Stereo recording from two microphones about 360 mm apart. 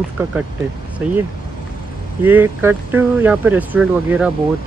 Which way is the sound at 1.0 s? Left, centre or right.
Centre.